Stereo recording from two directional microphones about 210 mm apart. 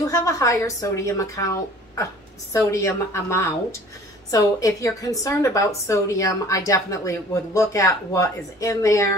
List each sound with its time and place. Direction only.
0.1 s a woman's voice: 15° left (ahead or behind)